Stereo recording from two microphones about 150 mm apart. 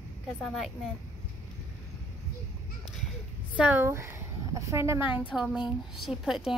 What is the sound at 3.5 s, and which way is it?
A woman's voice, 10° right (ahead or behind).